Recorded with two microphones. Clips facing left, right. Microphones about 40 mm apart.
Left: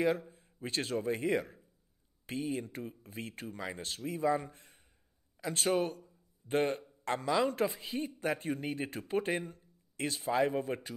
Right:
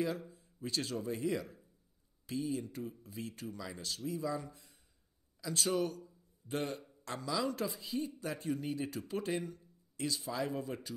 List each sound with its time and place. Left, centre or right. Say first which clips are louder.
0.3 s a man's voice: left 1 dB; left